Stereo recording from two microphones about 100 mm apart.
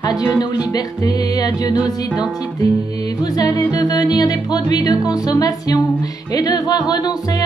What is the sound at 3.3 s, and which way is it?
Music, 40° left (ahead or behind).